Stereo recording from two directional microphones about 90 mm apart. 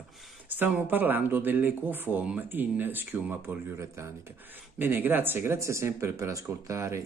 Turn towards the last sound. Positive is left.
turn(degrees=-35)  # may be behind; listen again after turning